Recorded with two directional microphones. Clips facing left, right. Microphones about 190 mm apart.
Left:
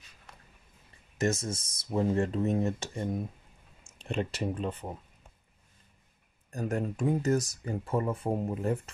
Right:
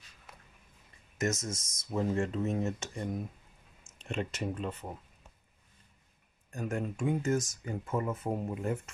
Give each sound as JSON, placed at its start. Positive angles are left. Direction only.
{"t": 0.3, "sound": "a sound", "side_deg": -5}
{"t": 1.1, "sound": "speech", "side_deg": 30}
{"t": 6.5, "sound": "speech", "side_deg": 35}